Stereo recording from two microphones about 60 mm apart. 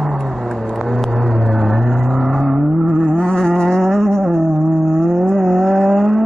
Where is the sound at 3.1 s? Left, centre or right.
Centre.